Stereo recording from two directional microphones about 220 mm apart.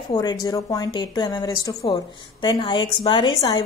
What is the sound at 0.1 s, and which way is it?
A woman's voice, 20° left (ahead or behind).